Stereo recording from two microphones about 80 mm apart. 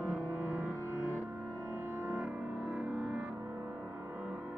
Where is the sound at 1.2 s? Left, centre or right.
Right.